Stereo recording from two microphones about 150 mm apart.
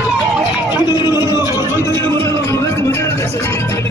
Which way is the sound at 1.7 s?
20° left (ahead or behind).